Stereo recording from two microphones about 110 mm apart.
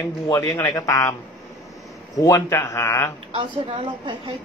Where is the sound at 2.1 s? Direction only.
30° left (ahead or behind).